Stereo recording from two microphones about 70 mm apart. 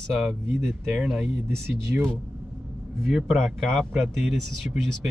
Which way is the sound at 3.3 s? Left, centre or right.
Centre.